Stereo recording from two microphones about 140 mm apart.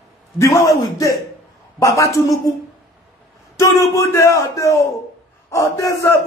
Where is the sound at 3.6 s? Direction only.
25° left (ahead or behind).